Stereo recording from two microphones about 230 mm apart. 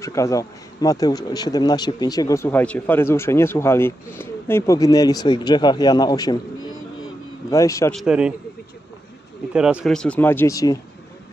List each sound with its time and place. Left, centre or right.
0.0 s speech: centre
7.9 s speech: centre
9.5 s speech: centre